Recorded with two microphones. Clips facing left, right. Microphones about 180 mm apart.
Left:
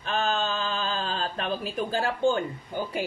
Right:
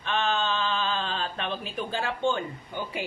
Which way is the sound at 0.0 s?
40° left (ahead or behind).